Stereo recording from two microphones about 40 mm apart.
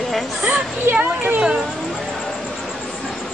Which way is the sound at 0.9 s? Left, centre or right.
Right.